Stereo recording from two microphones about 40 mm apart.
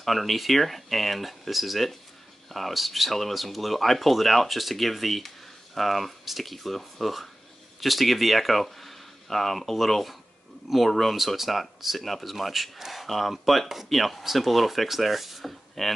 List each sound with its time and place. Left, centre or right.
0.0 s speech: centre
12.7 s speech: centre
13.0 s speech: centre